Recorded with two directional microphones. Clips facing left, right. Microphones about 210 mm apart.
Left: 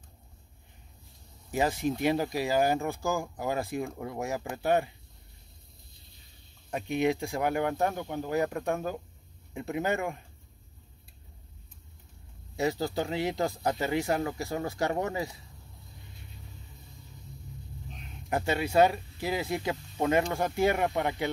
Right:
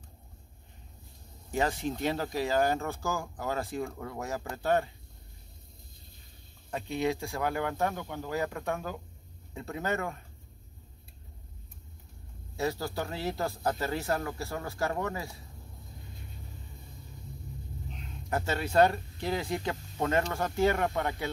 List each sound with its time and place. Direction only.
1.5 s speech: 10° left (ahead or behind)
6.7 s speech: 15° left (ahead or behind)
12.5 s speech: 20° left (ahead or behind)
18.3 s speech: 15° left (ahead or behind)